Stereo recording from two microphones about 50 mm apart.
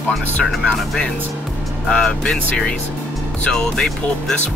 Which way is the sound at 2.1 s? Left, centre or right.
Centre.